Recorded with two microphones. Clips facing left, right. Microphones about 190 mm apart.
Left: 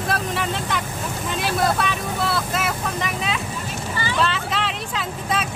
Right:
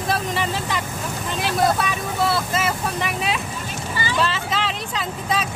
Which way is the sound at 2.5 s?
Centre (ahead or behind).